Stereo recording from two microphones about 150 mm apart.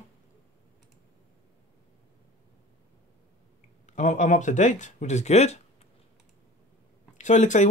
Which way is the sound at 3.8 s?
55° left (ahead or behind).